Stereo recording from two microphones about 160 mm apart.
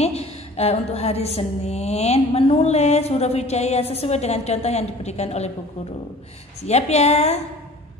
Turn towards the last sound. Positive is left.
turn(degrees=40)  # may be behind; listen again after turning